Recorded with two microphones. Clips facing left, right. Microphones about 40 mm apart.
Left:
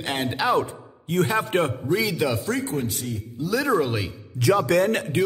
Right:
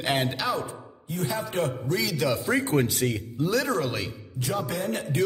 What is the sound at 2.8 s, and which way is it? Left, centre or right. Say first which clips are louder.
Speech: right 3 dB; right.